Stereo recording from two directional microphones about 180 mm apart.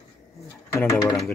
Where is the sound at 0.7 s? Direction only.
15° left (ahead or behind).